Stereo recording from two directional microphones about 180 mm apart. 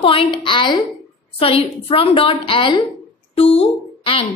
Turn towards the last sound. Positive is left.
turn(degrees=30)  # may be behind; listen again after turning